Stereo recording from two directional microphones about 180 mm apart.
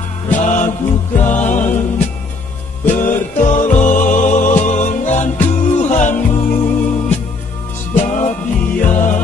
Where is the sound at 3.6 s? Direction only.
45° left (ahead or behind).